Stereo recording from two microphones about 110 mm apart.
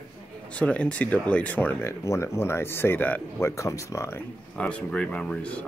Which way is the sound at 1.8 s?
25° left (ahead or behind).